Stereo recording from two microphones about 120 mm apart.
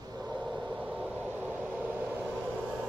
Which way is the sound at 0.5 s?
10° right (ahead or behind).